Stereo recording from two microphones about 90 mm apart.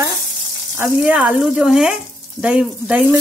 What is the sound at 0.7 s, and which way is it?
Speech, 15° right (ahead or behind).